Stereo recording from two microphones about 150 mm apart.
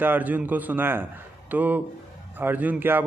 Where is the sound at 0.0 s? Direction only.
10° right (ahead or behind).